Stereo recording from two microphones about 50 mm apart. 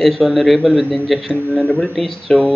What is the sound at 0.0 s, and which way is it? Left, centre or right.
A man's voice, centre.